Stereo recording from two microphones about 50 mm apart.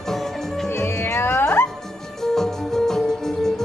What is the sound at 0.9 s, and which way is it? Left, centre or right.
Music, left.